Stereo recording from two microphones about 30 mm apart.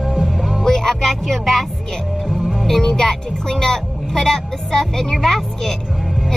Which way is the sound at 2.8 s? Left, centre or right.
Left.